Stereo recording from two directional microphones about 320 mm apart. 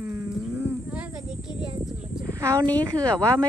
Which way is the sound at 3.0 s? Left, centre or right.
Centre.